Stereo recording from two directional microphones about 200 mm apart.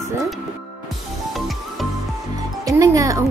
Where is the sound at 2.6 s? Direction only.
15° right (ahead or behind).